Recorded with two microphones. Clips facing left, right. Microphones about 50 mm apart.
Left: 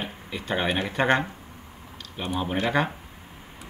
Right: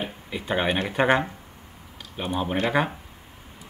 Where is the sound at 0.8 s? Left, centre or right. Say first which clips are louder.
Right 2 dB; centre.